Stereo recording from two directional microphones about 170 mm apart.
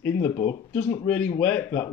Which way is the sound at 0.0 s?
15° left (ahead or behind).